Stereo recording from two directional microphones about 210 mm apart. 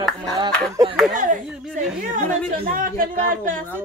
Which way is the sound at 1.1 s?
35° right (ahead or behind).